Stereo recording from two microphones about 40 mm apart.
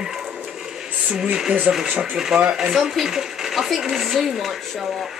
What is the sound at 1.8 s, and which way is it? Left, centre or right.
Speech, right.